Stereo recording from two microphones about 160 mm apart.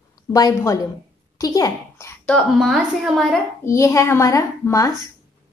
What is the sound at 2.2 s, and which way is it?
A woman's voice, 5° left (ahead or behind).